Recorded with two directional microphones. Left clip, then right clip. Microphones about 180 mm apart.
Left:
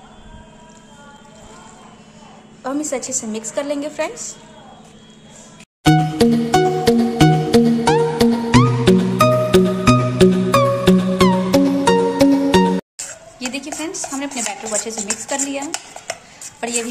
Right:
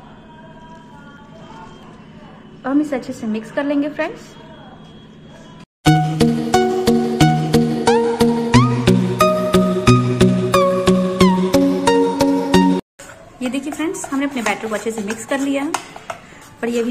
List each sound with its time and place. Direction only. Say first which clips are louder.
2.6 s a woman's voice: right 3 dB; 25° left (ahead or behind)
5.9 s music: left 1 dB; centre (ahead or behind)
13.7 s chopping: right 4 dB; 10° left (ahead or behind)
15.2 s dishes: right 5 dB; 10° left (ahead or behind)
16.5 s a sound: right 3 dB; 20° left (ahead or behind)